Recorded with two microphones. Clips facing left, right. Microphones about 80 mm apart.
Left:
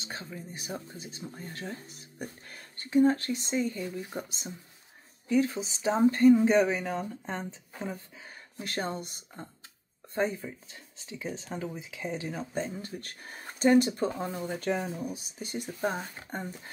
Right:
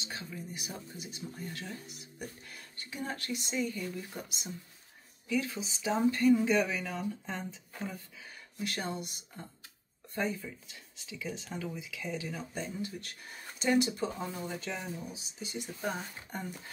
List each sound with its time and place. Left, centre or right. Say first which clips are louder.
0.0 s speech: left 2 dB; left
14.6 s speech: left 8 dB; left